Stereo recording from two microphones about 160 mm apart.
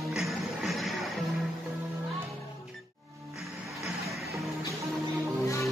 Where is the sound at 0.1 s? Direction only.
Centre (ahead or behind).